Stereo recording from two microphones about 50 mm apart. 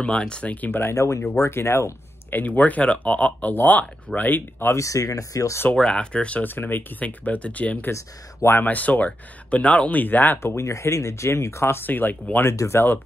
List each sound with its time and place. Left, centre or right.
0.0 s speech: centre
0.7 s speech: left
0.9 s speech: left
1.4 s speech: left
2.3 s speech: left
4.7 s speech: left
5.8 s speech: centre
6.4 s speech: left
7.0 s speech: left
10.4 s speech: left
12.5 s speech: left